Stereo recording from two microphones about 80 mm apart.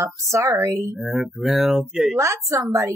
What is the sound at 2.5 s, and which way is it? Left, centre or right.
Speech, right.